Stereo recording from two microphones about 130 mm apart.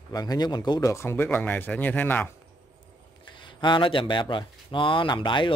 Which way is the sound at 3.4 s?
35° left (ahead or behind).